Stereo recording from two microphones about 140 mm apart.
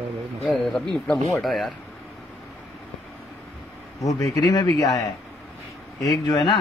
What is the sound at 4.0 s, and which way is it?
Speech, 25° left (ahead or behind).